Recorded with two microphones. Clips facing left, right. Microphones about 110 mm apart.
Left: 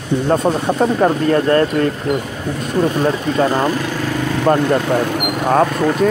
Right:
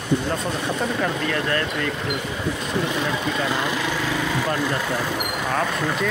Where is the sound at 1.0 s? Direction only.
35° left (ahead or behind).